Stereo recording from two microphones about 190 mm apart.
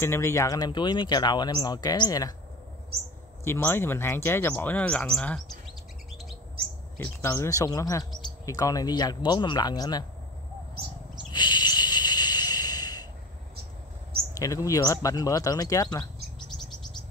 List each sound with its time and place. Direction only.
0.0 s speech: 15° left (ahead or behind)
3.4 s speech: 10° left (ahead or behind)
7.2 s speech: 15° left (ahead or behind)
11.3 s a sound: 25° left (ahead or behind)
14.3 s speech: 15° left (ahead or behind)